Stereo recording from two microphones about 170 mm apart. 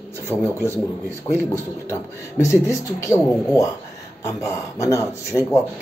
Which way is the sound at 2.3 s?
10° right (ahead or behind).